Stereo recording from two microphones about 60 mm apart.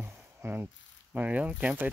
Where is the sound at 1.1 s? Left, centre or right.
Right.